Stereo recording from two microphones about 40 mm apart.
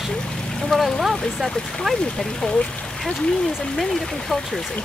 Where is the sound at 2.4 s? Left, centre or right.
Centre.